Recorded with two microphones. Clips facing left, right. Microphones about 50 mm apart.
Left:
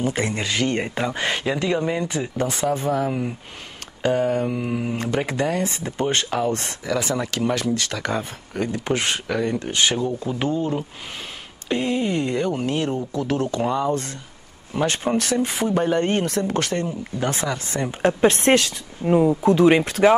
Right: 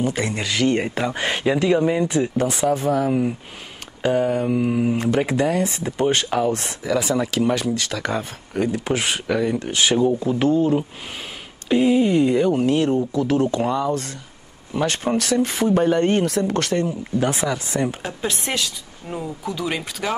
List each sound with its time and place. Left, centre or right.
0.0 s speech: centre
18.0 s speech: left
19.0 s speech: left